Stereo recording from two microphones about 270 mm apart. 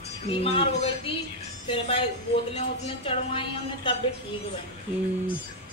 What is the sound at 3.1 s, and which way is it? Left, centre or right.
Speech, centre.